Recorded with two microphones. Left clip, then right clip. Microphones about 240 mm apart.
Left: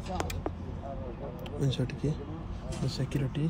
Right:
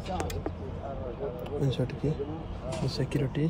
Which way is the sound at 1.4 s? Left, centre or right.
Centre.